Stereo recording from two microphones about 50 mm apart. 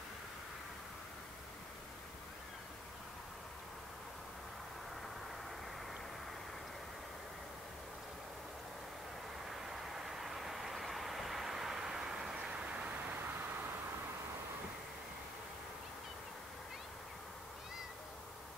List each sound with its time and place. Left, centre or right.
9.5 s vehicle: centre
12.4 s vehicle: right